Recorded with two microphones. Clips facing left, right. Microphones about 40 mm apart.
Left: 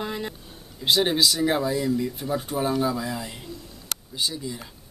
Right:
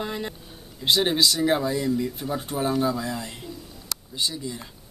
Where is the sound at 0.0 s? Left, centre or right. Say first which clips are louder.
Even; centre.